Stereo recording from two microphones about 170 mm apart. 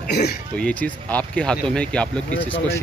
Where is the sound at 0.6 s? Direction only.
5° left (ahead or behind).